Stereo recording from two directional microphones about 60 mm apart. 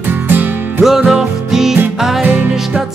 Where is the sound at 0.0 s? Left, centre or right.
Right.